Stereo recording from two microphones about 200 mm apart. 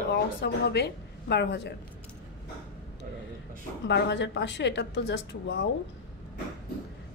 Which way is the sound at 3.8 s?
60° left (ahead or behind).